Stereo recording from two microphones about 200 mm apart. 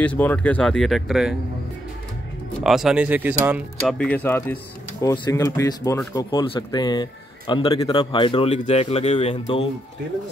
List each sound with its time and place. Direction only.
0.0 s speech: 5° left (ahead or behind)
2.6 s speech: centre (ahead or behind)
4.0 s speech: 10° left (ahead or behind); by 9.7 s 30° left (ahead or behind)